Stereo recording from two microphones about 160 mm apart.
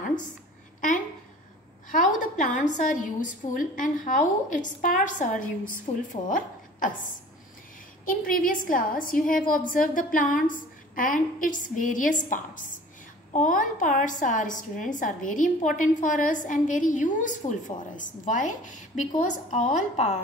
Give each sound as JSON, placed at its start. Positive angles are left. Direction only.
{"t": 0.7, "sound": "a sound", "side_deg": 55}
{"t": 1.9, "sound": "a woman's voice", "side_deg": 55}
{"t": 8.0, "sound": "a woman's voice", "side_deg": 60}